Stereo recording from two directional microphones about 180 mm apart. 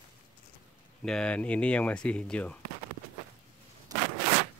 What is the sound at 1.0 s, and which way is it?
Speech, 5° left (ahead or behind).